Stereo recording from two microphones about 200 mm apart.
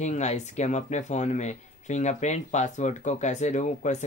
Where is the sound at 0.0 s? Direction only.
35° left (ahead or behind).